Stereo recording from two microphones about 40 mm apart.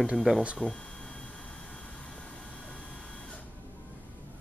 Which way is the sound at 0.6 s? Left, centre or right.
Left.